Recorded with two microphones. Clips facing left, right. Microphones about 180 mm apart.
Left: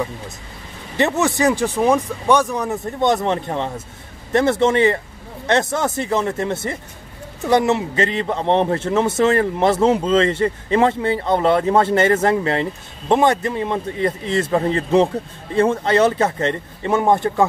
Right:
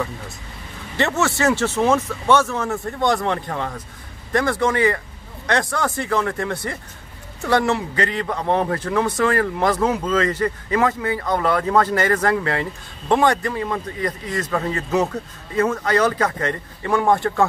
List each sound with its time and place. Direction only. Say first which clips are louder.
0.9 s a man's voice: left 3 dB; 15° left (ahead or behind)